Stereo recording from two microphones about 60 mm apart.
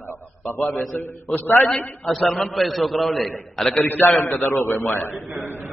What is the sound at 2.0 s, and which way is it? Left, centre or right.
A man's voice, centre.